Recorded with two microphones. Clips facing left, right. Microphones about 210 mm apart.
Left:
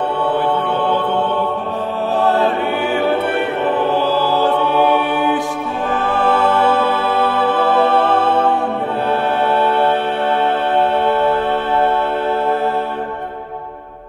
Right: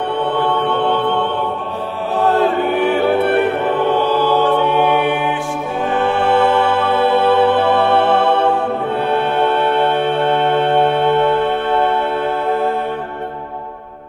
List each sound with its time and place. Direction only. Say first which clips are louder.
4.2 s music: right 1 dB; 35° left (ahead or behind)
6.1 s music: right 1 dB; 70° right (ahead or behind)